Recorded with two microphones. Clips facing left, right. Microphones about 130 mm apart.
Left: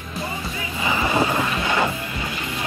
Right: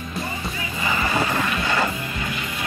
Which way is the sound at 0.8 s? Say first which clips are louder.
Left 2 dB; 10° left (ahead or behind).